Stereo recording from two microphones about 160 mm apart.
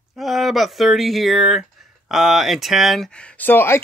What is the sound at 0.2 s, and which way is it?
Speech, centre (ahead or behind).